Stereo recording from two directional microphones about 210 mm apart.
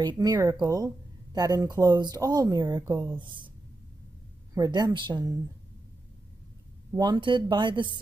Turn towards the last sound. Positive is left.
turn(degrees=-20)  # may be behind; listen again after turning